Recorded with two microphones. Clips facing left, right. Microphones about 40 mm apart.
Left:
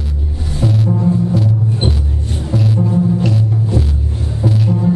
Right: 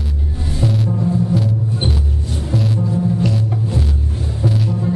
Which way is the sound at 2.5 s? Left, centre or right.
Centre.